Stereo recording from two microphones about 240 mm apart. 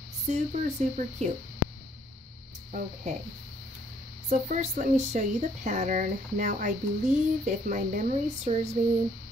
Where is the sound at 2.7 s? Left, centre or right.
Right.